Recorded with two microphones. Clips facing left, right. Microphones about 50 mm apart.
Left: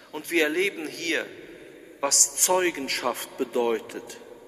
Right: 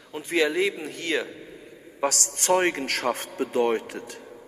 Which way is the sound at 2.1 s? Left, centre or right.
Right.